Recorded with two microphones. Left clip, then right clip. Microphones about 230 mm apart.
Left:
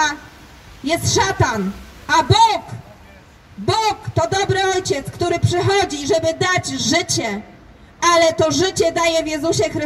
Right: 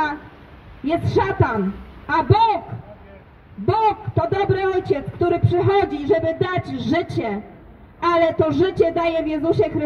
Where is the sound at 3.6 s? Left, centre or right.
Left.